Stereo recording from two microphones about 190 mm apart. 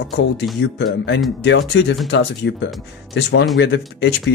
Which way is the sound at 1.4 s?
65° left (ahead or behind).